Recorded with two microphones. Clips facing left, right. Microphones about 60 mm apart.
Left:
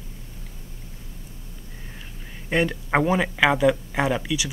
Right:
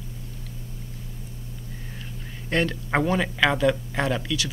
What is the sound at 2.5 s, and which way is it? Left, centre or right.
Speech, centre.